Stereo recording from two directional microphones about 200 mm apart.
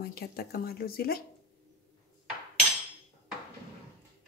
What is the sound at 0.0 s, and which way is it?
Speech, 50° left (ahead or behind).